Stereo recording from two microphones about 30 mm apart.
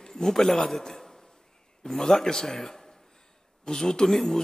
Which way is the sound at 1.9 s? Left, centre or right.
Centre.